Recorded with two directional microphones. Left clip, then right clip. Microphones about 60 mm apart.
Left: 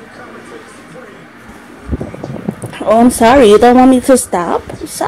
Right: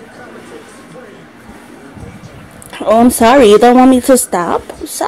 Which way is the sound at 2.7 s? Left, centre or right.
Right.